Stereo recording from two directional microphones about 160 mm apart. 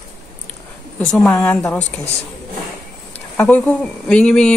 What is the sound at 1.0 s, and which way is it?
Speech, 10° left (ahead or behind).